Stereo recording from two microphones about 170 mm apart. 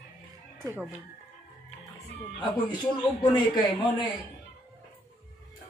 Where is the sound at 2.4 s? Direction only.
25° left (ahead or behind).